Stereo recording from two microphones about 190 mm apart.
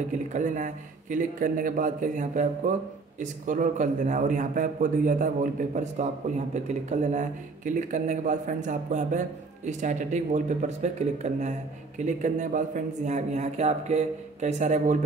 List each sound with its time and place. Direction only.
0.3 s a man's voice: 40° right (ahead or behind)